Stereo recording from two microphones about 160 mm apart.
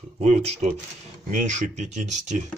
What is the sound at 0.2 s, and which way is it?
Speech, 45° right (ahead or behind).